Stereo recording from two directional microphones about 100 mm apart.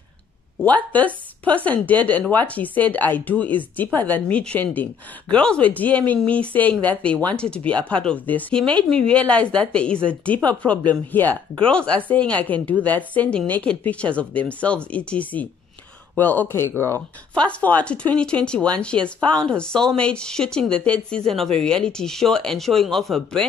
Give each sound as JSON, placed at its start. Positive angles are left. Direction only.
{"t": 0.7, "sound": "speech", "side_deg": 15}
{"t": 17.3, "sound": "speech", "side_deg": 10}